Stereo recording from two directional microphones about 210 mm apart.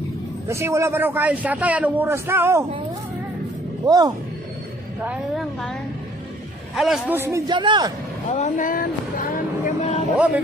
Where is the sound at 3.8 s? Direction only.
15° right (ahead or behind).